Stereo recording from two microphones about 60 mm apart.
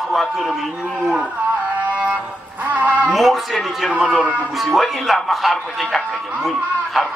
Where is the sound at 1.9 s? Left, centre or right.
Right.